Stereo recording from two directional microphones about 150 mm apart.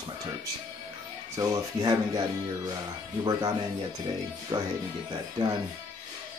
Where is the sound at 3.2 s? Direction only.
25° right (ahead or behind).